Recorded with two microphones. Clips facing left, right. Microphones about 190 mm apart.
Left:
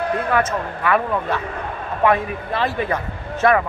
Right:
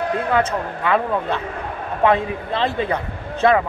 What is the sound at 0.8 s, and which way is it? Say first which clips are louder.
A man's voice: even; 20° right (ahead or behind).